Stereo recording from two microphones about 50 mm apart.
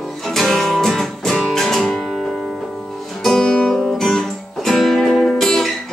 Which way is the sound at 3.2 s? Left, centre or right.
Centre.